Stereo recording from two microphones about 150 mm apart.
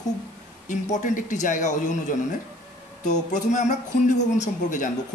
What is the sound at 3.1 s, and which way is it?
Speech, 55° left (ahead or behind).